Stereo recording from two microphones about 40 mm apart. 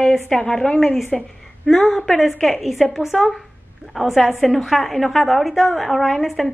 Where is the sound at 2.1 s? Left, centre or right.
Centre.